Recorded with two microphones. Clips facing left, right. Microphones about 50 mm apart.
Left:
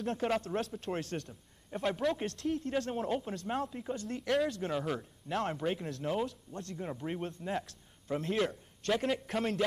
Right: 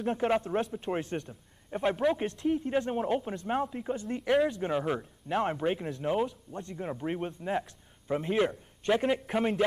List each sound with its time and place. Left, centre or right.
0.0 s a man's voice: centre